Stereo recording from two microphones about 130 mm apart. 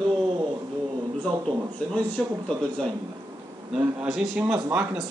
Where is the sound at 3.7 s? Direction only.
5° right (ahead or behind).